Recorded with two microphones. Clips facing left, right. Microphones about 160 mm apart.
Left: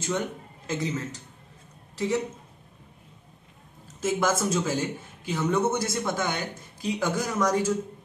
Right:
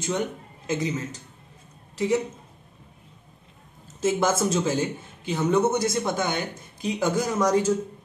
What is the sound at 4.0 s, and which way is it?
Speech, 25° right (ahead or behind).